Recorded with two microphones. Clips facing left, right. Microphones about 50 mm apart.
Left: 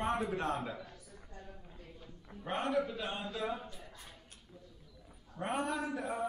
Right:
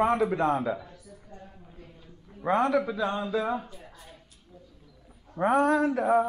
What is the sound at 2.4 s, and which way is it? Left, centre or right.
Speech, right.